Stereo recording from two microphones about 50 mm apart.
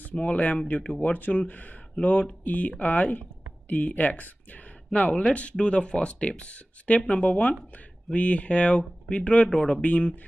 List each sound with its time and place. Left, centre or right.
0.1 s speech: left